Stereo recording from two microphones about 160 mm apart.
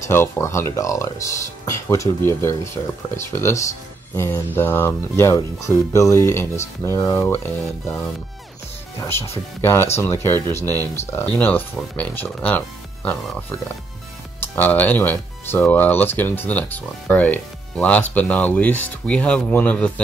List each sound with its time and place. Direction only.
0.1 s speech: 15° left (ahead or behind)
9.0 s speech: 15° left (ahead or behind)